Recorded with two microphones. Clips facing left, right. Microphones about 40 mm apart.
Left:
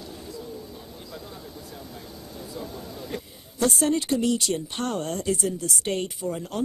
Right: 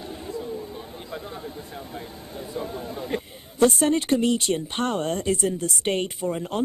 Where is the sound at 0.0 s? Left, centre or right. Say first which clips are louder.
Right 5 dB; right.